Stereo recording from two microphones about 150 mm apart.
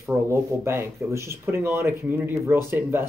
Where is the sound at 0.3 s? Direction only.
15° right (ahead or behind).